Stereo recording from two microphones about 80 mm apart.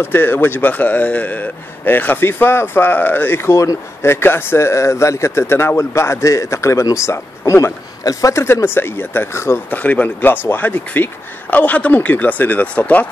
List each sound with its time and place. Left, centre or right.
0.0 s a man's voice: left
9.7 s speech: left